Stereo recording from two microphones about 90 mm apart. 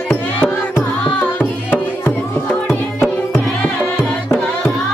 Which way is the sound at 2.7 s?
25° left (ahead or behind).